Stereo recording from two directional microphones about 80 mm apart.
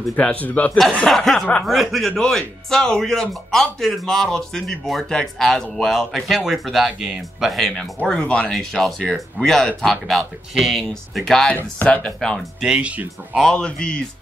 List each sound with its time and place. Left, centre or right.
0.2 s speech: centre
1.0 s speech: centre
11.5 s speech: centre
12.5 s speech: centre
13.4 s speech: centre